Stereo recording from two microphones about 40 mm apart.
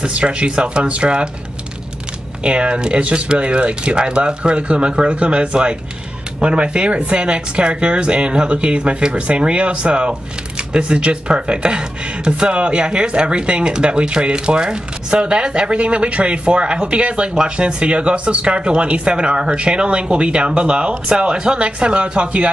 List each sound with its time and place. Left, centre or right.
0.0 s speech: right
2.4 s speech: right